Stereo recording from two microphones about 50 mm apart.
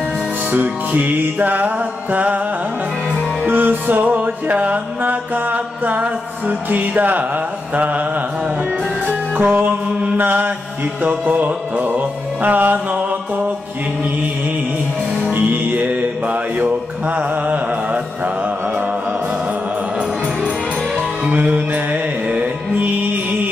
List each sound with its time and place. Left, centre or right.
0.5 s music: right
3.4 s music: right
9.0 s music: right
15.3 s music: right
21.3 s music: right